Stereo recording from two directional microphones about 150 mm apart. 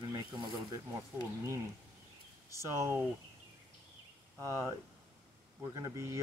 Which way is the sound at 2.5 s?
20° right (ahead or behind).